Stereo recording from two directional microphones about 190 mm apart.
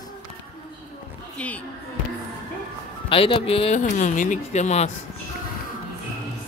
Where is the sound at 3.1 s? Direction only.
30° left (ahead or behind).